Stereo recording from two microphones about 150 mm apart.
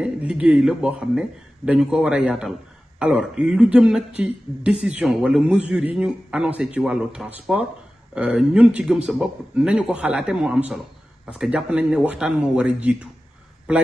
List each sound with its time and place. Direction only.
0.0 s a man's voice: 5° right (ahead or behind)